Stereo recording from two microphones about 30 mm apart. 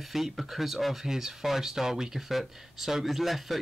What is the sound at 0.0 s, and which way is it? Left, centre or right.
Speech, centre.